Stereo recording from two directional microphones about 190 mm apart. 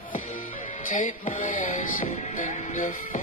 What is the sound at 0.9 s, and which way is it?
Music, 45° left (ahead or behind).